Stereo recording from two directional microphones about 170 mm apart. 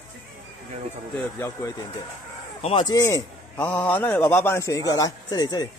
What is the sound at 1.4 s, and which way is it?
Speech, 15° left (ahead or behind).